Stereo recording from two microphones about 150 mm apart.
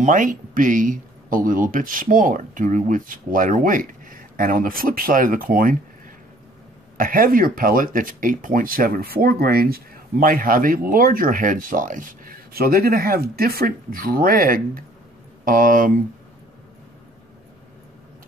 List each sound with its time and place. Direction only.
0.0 s speech: 60° right (ahead or behind)
7.0 s speech: 70° right (ahead or behind)